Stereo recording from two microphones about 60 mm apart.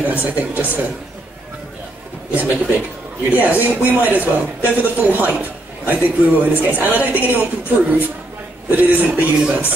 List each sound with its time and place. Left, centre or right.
0.0 s speech: right
2.3 s speech: right